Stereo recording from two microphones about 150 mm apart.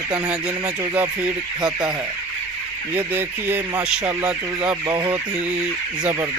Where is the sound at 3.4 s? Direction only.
10° right (ahead or behind).